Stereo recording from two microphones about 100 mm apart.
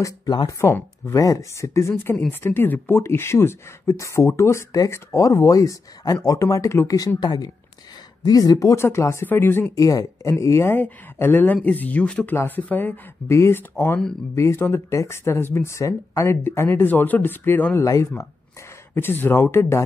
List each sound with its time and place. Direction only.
0.0 s speech: 45° left (ahead or behind)
0.5 s speech: 25° left (ahead or behind)
7.2 s speech: 45° left (ahead or behind); by 9.7 s 20° left (ahead or behind)
9.8 s speech: 35° left (ahead or behind); by 17.8 s 20° left (ahead or behind)
17.8 s speech: 30° left (ahead or behind)
18.9 s speech: 20° left (ahead or behind)